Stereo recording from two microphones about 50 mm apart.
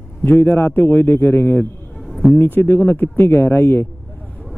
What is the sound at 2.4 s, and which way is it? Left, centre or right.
Speech, left.